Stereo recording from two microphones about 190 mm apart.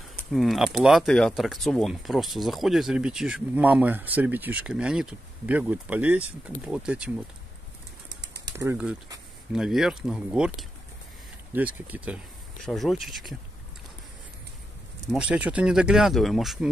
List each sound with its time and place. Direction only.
0.3 s speech: centre (ahead or behind)
8.1 s bird: 65° right (ahead or behind)
8.5 s speech: 10° right (ahead or behind)
15.1 s speech: 5° right (ahead or behind)